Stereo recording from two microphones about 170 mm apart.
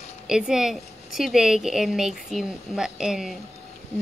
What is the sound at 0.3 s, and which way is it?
A woman's voice, 5° right (ahead or behind).